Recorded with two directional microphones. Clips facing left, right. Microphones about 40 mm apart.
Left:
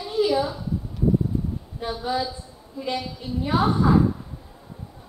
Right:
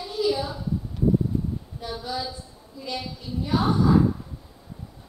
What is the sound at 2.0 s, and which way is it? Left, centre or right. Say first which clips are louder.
A woman's voice: left 6 dB; left.